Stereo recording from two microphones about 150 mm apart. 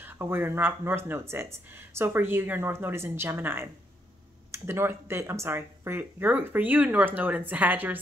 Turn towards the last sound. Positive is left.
turn(degrees=-10)  # may be behind; listen again after turning